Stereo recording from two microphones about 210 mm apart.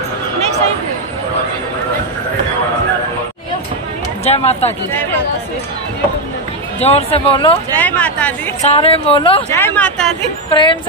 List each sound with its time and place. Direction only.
4.2 s speech: 30° left (ahead or behind)
6.8 s speech: 30° left (ahead or behind)
7.7 s speech: 5° left (ahead or behind)
8.6 s speech: 25° left (ahead or behind)
9.5 s speech: 10° left (ahead or behind)
10.5 s speech: 20° left (ahead or behind)